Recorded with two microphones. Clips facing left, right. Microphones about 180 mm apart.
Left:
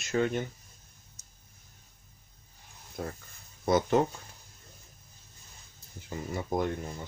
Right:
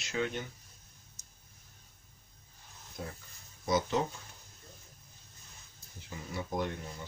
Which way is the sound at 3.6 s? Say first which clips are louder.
Left 6 dB; 55° left (ahead or behind).